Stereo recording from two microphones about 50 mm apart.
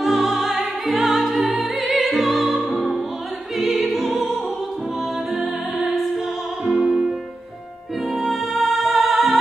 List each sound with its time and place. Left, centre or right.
0.0 s music: centre
5.8 s music: centre
6.8 s music: centre
8.1 s music: centre